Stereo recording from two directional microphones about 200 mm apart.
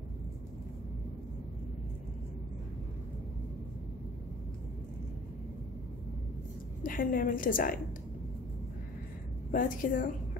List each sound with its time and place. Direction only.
6.8 s a woman's voice: 45° left (ahead or behind)
9.5 s a woman's voice: 45° left (ahead or behind)